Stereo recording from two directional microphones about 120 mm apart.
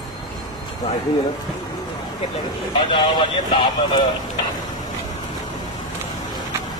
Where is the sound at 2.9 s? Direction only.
40° left (ahead or behind).